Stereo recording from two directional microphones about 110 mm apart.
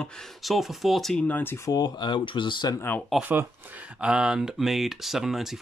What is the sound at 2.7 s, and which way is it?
Speech, 20° left (ahead or behind).